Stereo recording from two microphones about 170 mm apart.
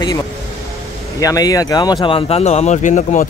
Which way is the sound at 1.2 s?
20° left (ahead or behind).